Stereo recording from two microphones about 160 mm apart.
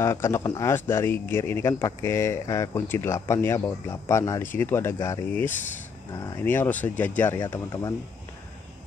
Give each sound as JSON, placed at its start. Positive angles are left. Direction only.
{"t": 0.0, "sound": "speech", "side_deg": 15}
{"t": 7.3, "sound": "speech", "side_deg": 20}